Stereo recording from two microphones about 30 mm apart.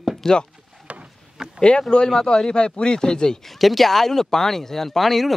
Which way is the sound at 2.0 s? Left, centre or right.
Left.